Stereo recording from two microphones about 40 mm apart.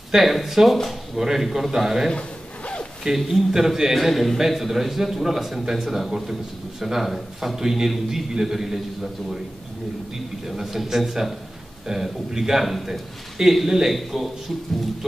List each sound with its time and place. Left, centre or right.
0.1 s a man's voice: centre
2.1 s a sound: left
3.2 s a man's voice: centre
10.4 s a man's voice: centre